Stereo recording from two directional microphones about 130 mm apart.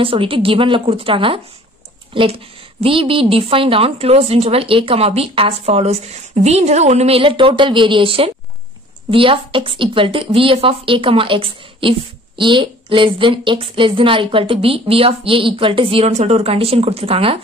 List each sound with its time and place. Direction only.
0.0 s a woman's voice: 45° right (ahead or behind)